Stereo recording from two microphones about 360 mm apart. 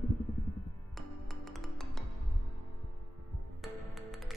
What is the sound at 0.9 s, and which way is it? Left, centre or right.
Music, centre.